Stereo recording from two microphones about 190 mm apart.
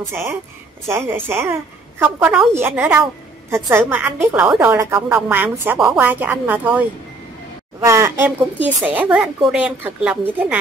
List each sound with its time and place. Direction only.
0.0 s a woman's voice: 15° right (ahead or behind)